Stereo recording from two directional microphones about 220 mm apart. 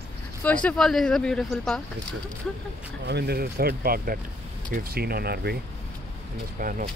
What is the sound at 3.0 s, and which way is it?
Speech, 45° right (ahead or behind).